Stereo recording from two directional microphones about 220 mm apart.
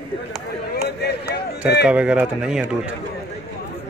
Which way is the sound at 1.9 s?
5° right (ahead or behind).